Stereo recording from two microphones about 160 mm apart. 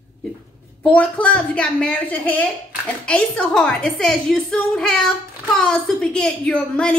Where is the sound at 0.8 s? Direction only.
10° left (ahead or behind).